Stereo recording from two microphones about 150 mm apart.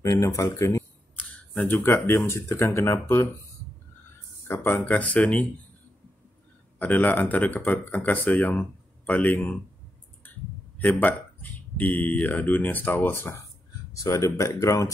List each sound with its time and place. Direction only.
0.0 s speech: 20° left (ahead or behind)
1.1 s speech: 10° left (ahead or behind)
4.5 s speech: 15° left (ahead or behind)
6.8 s speech: 10° left (ahead or behind)
10.8 s speech: 10° left (ahead or behind)